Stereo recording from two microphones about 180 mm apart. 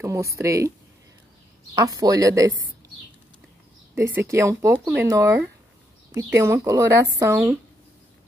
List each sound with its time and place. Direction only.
0.0 s speech: 15° right (ahead or behind)
1.8 s speech: 20° right (ahead or behind)
3.9 s speech: 15° right (ahead or behind)